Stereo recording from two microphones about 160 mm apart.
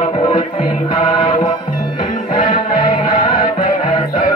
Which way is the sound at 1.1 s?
30° left (ahead or behind).